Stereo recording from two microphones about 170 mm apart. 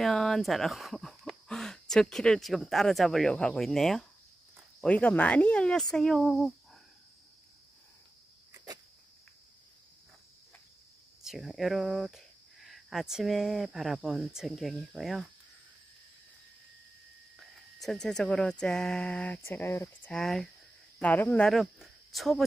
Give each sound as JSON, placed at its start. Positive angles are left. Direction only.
{"t": 0.0, "sound": "speech", "side_deg": 0}
{"t": 8.5, "sound": "cricket", "side_deg": -20}
{"t": 11.2, "sound": "speech", "side_deg": 0}
{"t": 17.4, "sound": "speech", "side_deg": 0}
{"t": 20.2, "sound": "speech", "side_deg": 0}